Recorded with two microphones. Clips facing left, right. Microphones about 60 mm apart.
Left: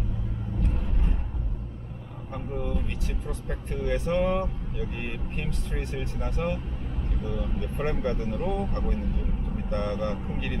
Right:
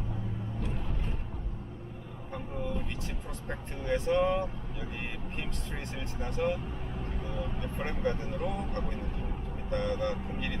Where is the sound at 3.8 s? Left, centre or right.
Left.